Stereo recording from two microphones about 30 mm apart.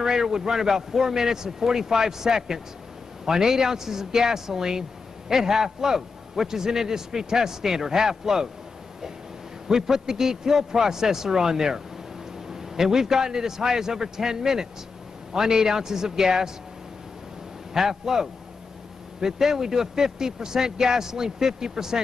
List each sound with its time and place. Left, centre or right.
0.0 s speech: centre
9.7 s speech: centre
17.7 s speech: centre